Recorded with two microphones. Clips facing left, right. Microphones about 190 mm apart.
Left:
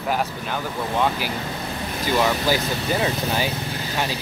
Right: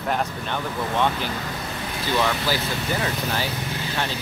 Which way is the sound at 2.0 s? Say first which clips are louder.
Left 3 dB; 15° left (ahead or behind).